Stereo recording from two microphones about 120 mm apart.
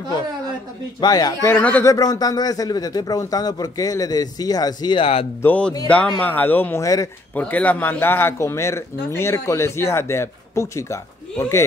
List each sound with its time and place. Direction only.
1.0 s a man's voice: 35° left (ahead or behind)
1.4 s speech: 15° left (ahead or behind)
1.9 s a man's voice: 30° left (ahead or behind); by 5.2 s 45° left (ahead or behind)
5.4 s speech: 15° left (ahead or behind)
6.8 s a man's voice: 30° left (ahead or behind)
7.3 s a man's voice: 10° left (ahead or behind)